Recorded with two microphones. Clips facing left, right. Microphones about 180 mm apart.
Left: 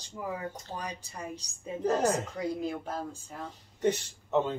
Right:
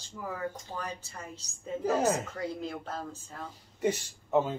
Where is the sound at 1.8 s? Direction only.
5° right (ahead or behind).